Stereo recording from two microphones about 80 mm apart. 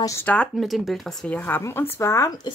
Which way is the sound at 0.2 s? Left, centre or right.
Centre.